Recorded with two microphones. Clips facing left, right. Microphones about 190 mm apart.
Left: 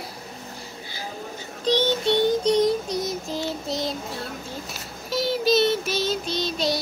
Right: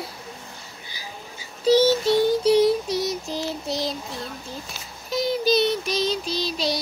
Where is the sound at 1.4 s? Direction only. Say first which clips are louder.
Right 6 dB; 10° right (ahead or behind).